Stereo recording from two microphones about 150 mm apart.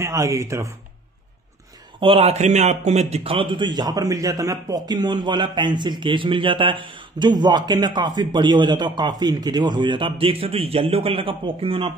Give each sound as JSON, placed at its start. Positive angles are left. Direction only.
{"t": 0.0, "sound": "speech", "side_deg": -20}
{"t": 2.0, "sound": "a man's voice", "side_deg": -40}